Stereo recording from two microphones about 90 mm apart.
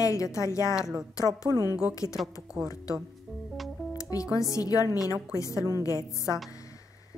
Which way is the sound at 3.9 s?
40° left (ahead or behind).